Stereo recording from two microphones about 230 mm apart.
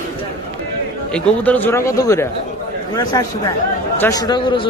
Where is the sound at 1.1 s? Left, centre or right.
Centre.